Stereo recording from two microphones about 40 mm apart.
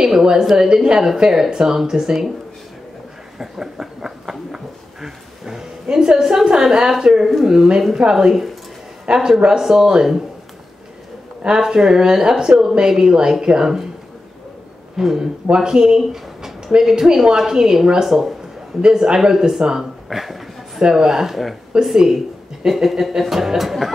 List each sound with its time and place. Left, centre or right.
0.0 s speech: centre
3.3 s a sound: centre
6.6 s speech: centre
11.6 s speech: centre
15.0 s speech: centre
18.0 s speech: centre
18.8 s speech: right
20.1 s a sound: centre
20.8 s speech: centre